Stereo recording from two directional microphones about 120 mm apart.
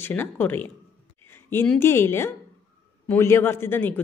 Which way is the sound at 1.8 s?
20° left (ahead or behind).